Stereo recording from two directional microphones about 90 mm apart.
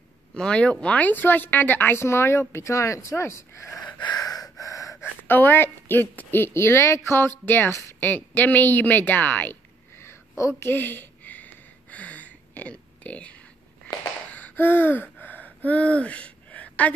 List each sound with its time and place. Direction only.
0.3 s speech: 10° left (ahead or behind); by 3.8 s 30° left (ahead or behind)
3.8 s gasp: 50° left (ahead or behind)
5.3 s a woman's voice: 25° left (ahead or behind)
10.6 s a sound: 25° left (ahead or behind)
14.3 s gasp: 20° left (ahead or behind)